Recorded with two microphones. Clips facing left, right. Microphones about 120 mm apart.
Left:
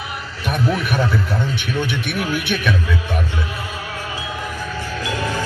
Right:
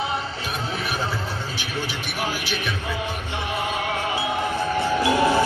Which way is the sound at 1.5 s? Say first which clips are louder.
Left 6 dB; 60° left (ahead or behind).